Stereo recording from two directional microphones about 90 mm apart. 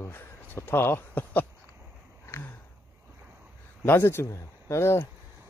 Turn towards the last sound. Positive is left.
turn(degrees=30)  # may be behind; listen again after turning